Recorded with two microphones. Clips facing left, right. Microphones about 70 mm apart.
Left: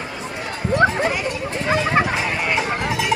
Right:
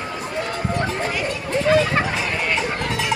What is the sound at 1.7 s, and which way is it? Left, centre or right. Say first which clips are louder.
Fowl: right 1 dB; centre.